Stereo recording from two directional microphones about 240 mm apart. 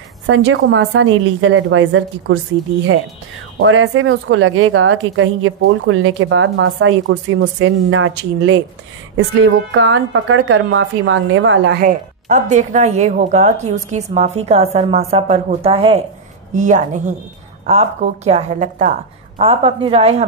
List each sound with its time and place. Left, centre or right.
0.3 s a woman's voice: right
3.5 s a woman's voice: right
11.8 s a woman's voice: right